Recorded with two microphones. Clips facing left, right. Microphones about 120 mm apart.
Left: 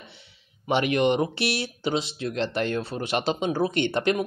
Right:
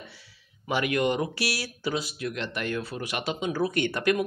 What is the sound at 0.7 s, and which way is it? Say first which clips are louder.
Speech: left 4 dB; 25° left (ahead or behind).